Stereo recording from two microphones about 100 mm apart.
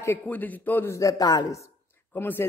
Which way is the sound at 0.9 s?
35° left (ahead or behind).